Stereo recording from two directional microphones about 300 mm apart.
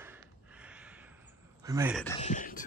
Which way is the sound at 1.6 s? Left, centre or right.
Centre.